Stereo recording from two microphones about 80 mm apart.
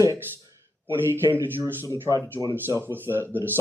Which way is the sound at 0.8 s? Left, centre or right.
Right.